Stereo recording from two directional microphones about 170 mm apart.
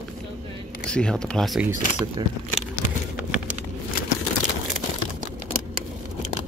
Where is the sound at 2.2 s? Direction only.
25° right (ahead or behind).